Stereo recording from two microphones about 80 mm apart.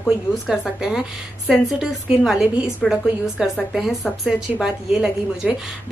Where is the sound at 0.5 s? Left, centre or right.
Centre.